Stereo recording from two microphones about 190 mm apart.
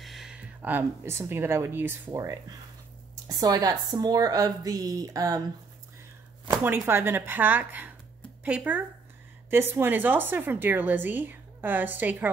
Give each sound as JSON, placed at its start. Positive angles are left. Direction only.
{"t": 0.0, "sound": "speech", "side_deg": 0}
{"t": 6.4, "sound": "a woman's voice", "side_deg": -10}